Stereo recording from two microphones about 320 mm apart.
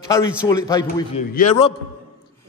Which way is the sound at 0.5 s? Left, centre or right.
Centre.